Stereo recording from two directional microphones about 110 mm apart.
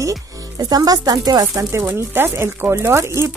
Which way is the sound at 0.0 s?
35° right (ahead or behind).